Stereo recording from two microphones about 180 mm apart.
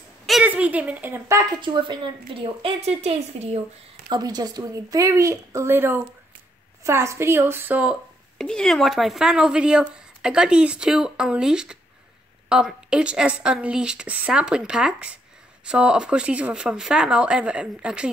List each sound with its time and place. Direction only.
0.3 s speech: 5° right (ahead or behind); by 3.4 s 35° right (ahead or behind)
4.1 s a woman's voice: 20° right (ahead or behind)
8.4 s speech: 5° left (ahead or behind)